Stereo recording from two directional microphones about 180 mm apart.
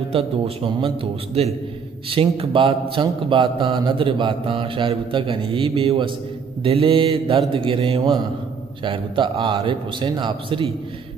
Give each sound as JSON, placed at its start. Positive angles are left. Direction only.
{"t": 0.1, "sound": "a man's voice", "side_deg": -30}